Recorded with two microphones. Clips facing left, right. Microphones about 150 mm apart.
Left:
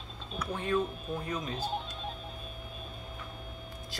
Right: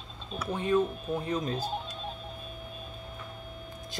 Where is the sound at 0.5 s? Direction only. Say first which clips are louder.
Right 4 dB; 20° right (ahead or behind).